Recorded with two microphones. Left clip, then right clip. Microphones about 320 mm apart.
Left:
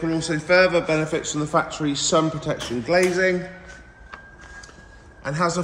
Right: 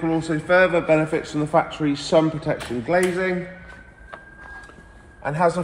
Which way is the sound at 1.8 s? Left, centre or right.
Centre.